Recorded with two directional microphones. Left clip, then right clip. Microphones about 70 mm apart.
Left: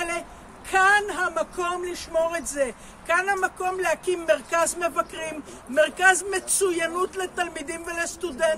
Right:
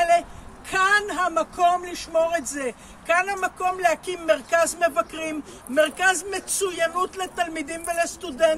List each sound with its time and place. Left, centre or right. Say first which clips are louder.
0.7 s a man's voice: left 1 dB; left